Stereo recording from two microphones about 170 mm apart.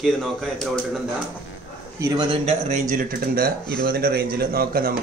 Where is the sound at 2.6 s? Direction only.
45° right (ahead or behind).